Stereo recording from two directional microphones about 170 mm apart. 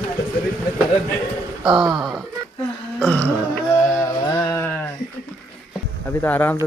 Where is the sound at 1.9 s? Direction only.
Centre (ahead or behind).